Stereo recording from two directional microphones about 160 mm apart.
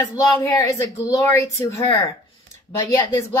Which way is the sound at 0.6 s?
20° left (ahead or behind).